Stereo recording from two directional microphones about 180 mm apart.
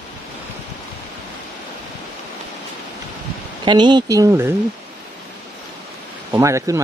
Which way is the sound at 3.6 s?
25° right (ahead or behind).